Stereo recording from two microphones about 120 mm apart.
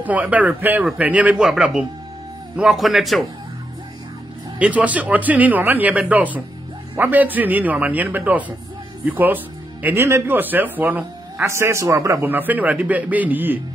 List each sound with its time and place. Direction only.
0.0 s a man's voice: 15° right (ahead or behind)
4.6 s a man's voice: 10° right (ahead or behind)
11.4 s a man's voice: 20° right (ahead or behind)